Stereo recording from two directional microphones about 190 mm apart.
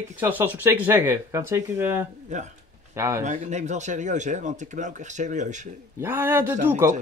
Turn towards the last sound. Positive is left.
turn(degrees=-15)  # may be behind; listen again after turning